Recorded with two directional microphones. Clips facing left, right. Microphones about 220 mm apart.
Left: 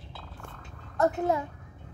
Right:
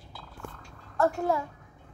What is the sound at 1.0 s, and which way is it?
Speech, 20° left (ahead or behind).